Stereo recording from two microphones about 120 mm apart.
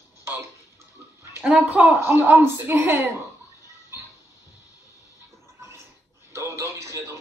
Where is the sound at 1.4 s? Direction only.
10° right (ahead or behind).